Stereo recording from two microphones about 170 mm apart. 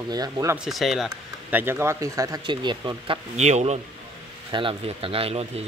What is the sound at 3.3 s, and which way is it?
Speech, 40° right (ahead or behind).